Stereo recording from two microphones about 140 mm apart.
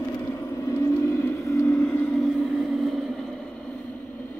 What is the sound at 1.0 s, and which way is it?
Vehicle, 15° left (ahead or behind).